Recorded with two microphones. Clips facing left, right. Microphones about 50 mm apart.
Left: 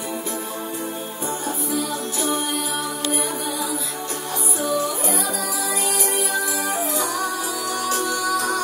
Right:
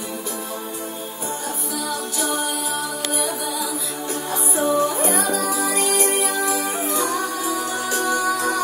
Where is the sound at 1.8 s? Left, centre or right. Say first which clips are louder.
Even; left.